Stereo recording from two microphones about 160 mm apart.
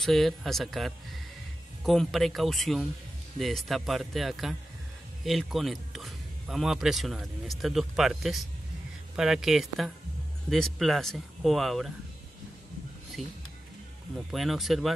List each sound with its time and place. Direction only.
0.0 s a man's voice: centre (ahead or behind)
13.2 s speech: 45° right (ahead or behind)
14.3 s a man's voice: centre (ahead or behind)